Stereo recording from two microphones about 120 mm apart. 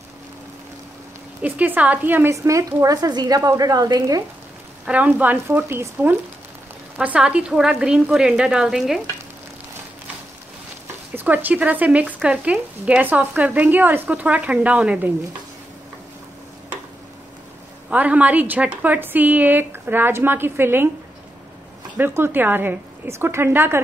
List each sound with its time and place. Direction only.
1.4 s a woman's voice: 15° right (ahead or behind); by 4.2 s 30° right (ahead or behind)
4.8 s speech: 10° right (ahead or behind)
11.1 s speech: 15° right (ahead or behind)
17.8 s speech: 10° right (ahead or behind)
21.9 s speech: 20° right (ahead or behind)